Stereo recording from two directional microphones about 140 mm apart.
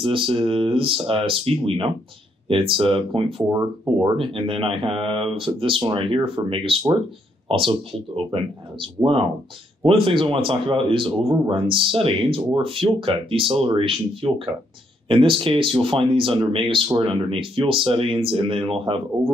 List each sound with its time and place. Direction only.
0.0 s speech: 40° right (ahead or behind)